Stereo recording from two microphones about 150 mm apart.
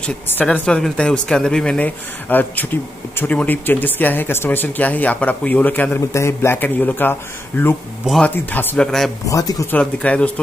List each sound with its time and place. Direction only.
0.0 s speech: 10° left (ahead or behind)
8.0 s speech: centre (ahead or behind)
9.2 s speech: 25° left (ahead or behind)
9.7 s speech: 10° left (ahead or behind)